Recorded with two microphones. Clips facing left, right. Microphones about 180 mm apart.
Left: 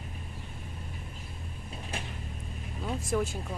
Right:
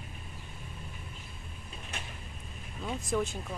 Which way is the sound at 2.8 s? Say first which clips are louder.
Left 1 dB; 5° left (ahead or behind).